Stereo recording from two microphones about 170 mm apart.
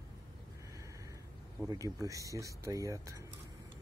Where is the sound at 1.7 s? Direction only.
20° right (ahead or behind).